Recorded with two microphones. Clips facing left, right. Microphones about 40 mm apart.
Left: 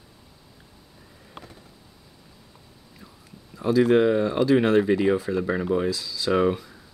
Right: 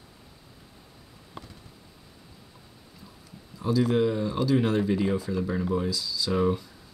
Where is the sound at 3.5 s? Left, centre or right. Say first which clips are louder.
Left 6 dB; left.